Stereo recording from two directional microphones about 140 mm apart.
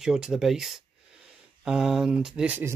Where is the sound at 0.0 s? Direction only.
5° right (ahead or behind).